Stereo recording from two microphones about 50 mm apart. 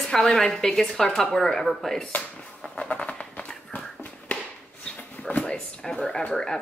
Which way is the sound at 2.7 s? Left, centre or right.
Left.